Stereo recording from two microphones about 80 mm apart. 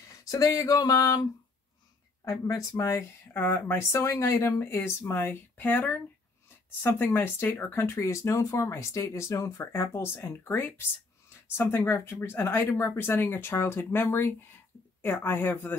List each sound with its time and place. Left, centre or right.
0.1 s speech: left
2.2 s speech: left
3.3 s speech: left